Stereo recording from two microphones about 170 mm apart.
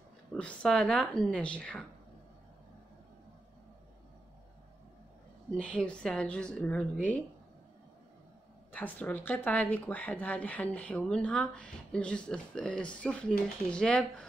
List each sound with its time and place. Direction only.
0.3 s a woman's voice: 5° left (ahead or behind)
5.5 s a woman's voice: 5° left (ahead or behind)
8.7 s a woman's voice: 10° left (ahead or behind)